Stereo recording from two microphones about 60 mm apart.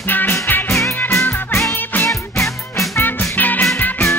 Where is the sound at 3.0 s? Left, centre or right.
Left.